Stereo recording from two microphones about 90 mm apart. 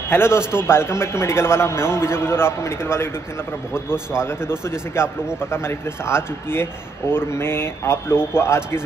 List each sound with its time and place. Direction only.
0.1 s a man's voice: 25° left (ahead or behind)